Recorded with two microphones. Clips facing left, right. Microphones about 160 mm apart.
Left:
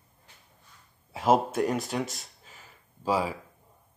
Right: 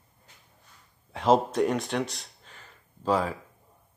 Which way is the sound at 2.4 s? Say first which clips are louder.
Right 1 dB; 5° left (ahead or behind).